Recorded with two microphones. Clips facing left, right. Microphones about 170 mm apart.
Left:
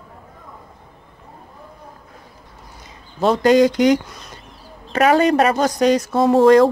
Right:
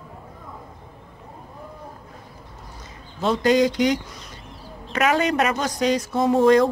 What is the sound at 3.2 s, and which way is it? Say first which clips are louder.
Speech: left 5 dB; 45° left (ahead or behind).